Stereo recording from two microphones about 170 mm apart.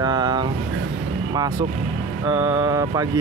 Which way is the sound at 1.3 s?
25° right (ahead or behind).